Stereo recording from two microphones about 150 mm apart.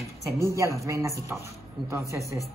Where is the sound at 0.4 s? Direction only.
20° right (ahead or behind).